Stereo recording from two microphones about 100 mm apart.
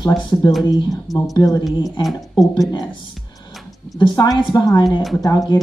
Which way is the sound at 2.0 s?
Centre (ahead or behind).